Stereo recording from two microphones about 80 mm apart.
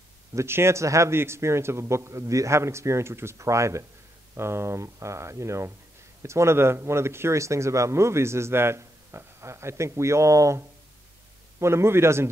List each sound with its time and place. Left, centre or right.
0.3 s speech: right
11.6 s speech: right